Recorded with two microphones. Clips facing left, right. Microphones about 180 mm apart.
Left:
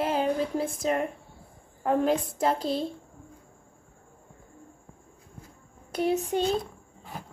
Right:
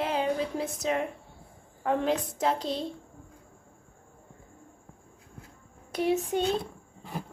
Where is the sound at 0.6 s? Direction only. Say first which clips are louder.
Left 3 dB; 50° left (ahead or behind).